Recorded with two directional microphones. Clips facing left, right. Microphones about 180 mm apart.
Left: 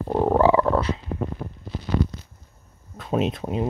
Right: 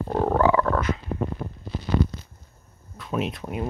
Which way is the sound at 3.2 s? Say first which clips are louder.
Left 5 dB; 25° left (ahead or behind).